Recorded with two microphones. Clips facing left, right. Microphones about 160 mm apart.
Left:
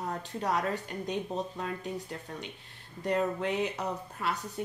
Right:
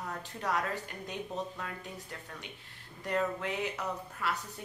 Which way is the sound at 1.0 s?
25° left (ahead or behind).